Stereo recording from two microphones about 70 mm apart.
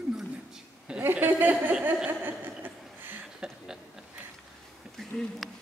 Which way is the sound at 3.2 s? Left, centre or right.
Centre.